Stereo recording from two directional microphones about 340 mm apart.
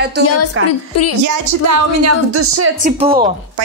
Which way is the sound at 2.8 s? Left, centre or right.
Centre.